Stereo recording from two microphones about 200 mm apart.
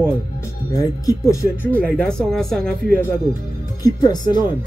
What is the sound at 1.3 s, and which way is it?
Speech, 10° left (ahead or behind).